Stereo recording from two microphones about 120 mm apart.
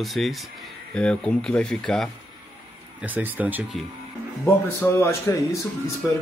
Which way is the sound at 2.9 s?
15° right (ahead or behind).